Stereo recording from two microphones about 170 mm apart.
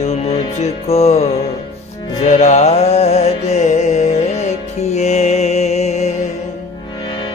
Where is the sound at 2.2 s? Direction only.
45° left (ahead or behind).